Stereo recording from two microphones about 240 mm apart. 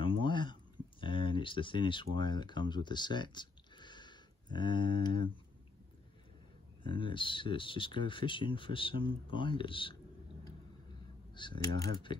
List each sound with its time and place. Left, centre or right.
0.0 s a sound: left
2.1 s speech: centre
6.8 s speech: left
11.3 s speech: centre